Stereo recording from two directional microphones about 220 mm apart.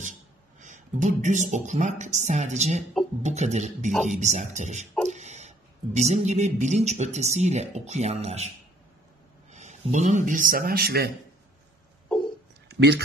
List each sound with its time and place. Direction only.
0.0 s speech: 35° right (ahead or behind)
9.5 s speech: 30° right (ahead or behind)
12.6 s a sound: 50° right (ahead or behind)